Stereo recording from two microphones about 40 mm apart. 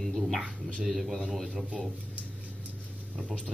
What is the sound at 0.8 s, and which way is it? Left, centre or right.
Speech, centre.